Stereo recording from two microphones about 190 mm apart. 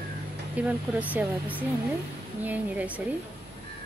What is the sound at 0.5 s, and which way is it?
A woman's voice, 10° right (ahead or behind).